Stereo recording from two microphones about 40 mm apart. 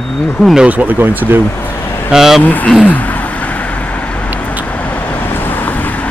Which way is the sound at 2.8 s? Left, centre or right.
Left.